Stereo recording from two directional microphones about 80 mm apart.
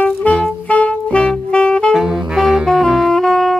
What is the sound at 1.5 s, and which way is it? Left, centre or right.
Saxophone, centre.